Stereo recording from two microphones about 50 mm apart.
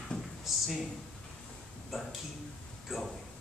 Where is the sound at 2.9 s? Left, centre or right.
Centre.